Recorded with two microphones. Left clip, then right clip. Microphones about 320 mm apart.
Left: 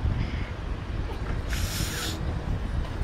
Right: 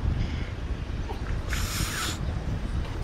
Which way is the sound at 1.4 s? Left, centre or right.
Centre.